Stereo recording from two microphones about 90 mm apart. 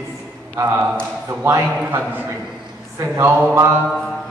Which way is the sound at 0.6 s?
30° right (ahead or behind).